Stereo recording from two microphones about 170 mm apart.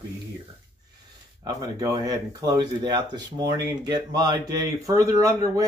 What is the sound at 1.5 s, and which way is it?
Speech, 20° right (ahead or behind).